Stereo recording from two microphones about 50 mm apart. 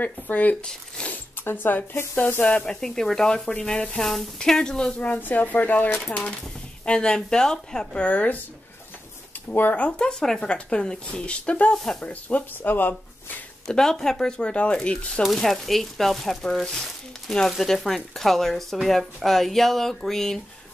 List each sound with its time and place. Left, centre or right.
0.0 s speech: left
1.0 s zipper: centre
1.4 s speech: left
2.6 s speech: centre
4.9 s speech: left
6.9 s speech: centre
8.0 s speech: left
9.5 s speech: left
9.8 s speech: centre
11.7 s speech: centre
12.0 s speech: left
13.7 s speech: centre
15.3 s speech: centre